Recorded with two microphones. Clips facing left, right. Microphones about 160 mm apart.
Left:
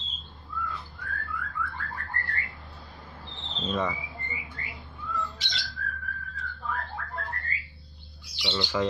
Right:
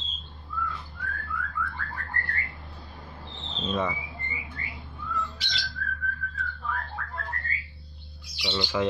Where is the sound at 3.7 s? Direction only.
10° right (ahead or behind).